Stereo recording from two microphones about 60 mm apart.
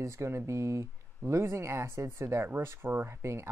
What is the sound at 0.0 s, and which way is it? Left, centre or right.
Speech, right.